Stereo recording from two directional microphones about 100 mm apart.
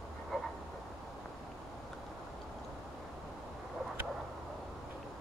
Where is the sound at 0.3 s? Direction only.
Centre (ahead or behind).